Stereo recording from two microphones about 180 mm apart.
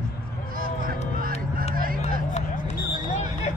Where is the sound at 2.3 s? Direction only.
40° left (ahead or behind).